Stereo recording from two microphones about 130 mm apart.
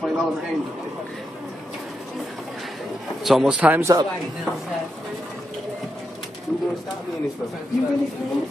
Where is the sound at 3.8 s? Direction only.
30° right (ahead or behind).